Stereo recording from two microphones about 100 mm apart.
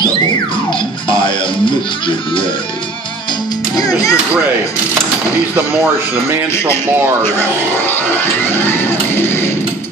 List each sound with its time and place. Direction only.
3.7 s speech: 35° left (ahead or behind)
7.2 s speech: 20° left (ahead or behind)